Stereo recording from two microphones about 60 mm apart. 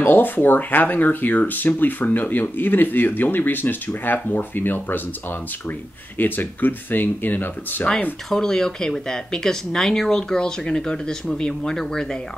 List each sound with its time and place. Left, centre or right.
0.0 s speech: left
6.1 s speech: left
8.3 s speech: centre